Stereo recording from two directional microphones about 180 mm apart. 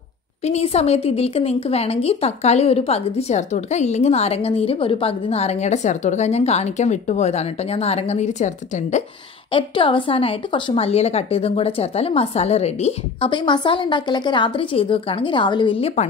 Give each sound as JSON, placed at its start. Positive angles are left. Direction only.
{"t": 0.4, "sound": "speech", "side_deg": 35}
{"t": 9.5, "sound": "a woman's voice", "side_deg": 30}